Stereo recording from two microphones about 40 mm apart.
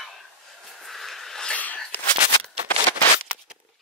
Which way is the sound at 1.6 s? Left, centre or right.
Left.